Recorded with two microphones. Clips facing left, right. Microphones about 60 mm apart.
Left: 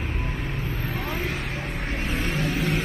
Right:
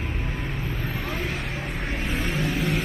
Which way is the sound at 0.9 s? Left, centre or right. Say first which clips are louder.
Left 2 dB; centre.